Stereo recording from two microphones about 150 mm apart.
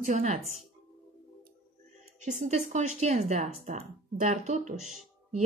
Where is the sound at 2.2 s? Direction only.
50° right (ahead or behind).